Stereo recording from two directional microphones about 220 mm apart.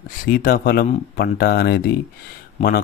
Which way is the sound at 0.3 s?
40° left (ahead or behind).